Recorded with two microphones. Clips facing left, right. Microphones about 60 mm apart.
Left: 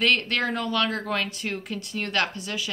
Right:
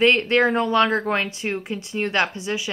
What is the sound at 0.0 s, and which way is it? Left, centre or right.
Speech, right.